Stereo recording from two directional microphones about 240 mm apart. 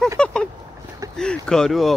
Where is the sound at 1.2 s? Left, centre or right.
Centre.